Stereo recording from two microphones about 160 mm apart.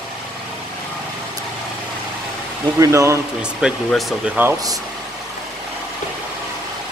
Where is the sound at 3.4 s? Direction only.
Centre (ahead or behind).